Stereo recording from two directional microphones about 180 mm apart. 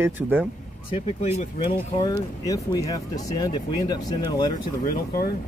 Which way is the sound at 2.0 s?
20° left (ahead or behind).